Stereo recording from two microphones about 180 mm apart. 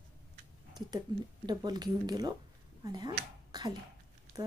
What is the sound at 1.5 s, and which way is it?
Speech, 20° right (ahead or behind).